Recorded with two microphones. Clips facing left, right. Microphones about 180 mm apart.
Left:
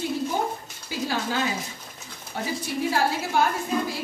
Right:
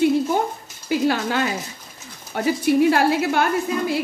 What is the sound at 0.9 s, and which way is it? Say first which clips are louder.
A woman's voice: right 8 dB; 65° right (ahead or behind).